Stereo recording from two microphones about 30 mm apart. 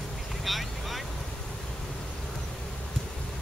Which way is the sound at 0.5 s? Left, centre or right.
Centre.